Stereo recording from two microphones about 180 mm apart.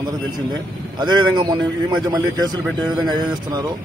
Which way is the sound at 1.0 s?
25° right (ahead or behind).